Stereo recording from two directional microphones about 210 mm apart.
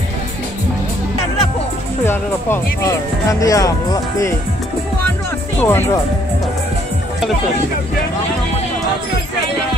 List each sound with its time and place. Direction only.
2.0 s speech: 10° left (ahead or behind)
5.6 s speech: 10° left (ahead or behind)